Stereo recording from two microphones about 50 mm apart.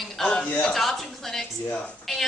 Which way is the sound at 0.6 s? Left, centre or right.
Centre.